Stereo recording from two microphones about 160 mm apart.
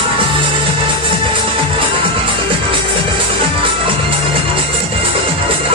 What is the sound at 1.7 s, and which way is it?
Music, 35° right (ahead or behind).